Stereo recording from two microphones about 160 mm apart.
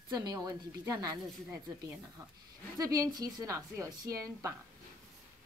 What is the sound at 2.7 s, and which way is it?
A woman's voice, 20° right (ahead or behind).